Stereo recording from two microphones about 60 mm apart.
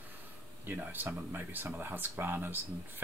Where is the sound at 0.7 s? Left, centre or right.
Right.